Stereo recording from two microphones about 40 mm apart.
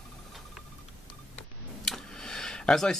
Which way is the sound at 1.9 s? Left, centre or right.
Centre.